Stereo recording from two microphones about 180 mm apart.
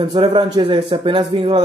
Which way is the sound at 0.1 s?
25° right (ahead or behind).